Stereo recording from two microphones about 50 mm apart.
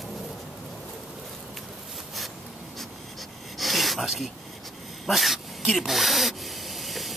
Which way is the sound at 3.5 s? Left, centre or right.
Centre.